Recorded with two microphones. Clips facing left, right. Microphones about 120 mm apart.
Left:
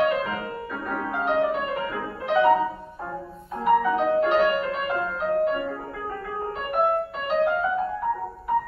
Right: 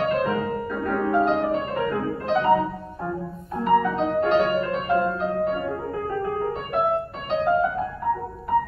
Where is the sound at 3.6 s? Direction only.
5° left (ahead or behind).